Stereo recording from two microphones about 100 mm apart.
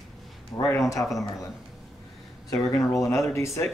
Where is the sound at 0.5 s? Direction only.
20° left (ahead or behind).